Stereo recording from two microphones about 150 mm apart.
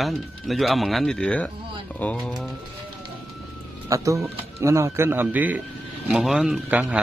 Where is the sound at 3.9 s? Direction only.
20° right (ahead or behind).